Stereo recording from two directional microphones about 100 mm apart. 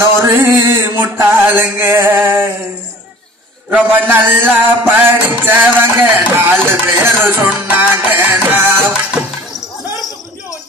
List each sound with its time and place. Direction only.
0.0 s music: 25° right (ahead or behind)
3.7 s music: 20° right (ahead or behind)